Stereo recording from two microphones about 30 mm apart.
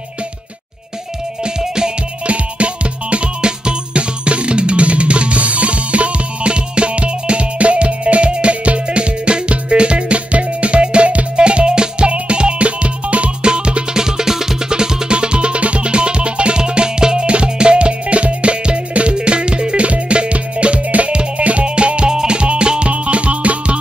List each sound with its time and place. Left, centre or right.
2.2 s music: right
13.4 s music: right
13.9 s music: right
22.1 s music: right
22.4 s music: right